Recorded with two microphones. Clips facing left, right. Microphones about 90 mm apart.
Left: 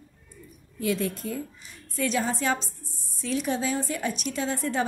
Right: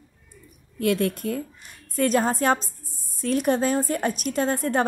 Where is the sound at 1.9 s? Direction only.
50° right (ahead or behind).